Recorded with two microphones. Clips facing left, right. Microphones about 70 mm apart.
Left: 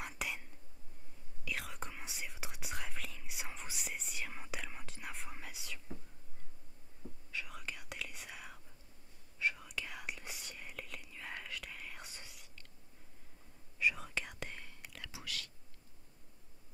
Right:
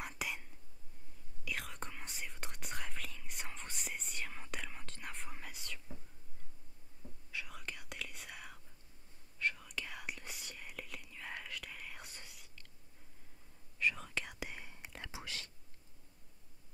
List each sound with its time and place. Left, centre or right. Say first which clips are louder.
0.0 s whispering: even; centre
7.0 s whispering: left 4 dB; left
7.3 s whispering: left 1 dB; centre
13.7 s whispering: left 1 dB; centre
14.5 s whispering: right 1 dB; centre